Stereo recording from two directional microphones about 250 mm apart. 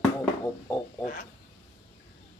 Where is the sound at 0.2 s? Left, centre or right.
Centre.